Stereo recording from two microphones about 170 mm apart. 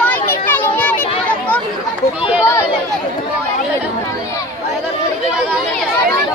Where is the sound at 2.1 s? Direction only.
10° right (ahead or behind).